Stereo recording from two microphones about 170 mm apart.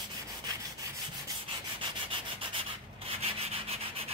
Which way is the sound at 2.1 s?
30° right (ahead or behind).